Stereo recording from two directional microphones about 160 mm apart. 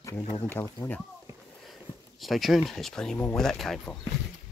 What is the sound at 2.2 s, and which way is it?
Speech, centre (ahead or behind).